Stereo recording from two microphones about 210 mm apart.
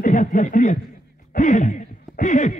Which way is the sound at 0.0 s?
40° left (ahead or behind).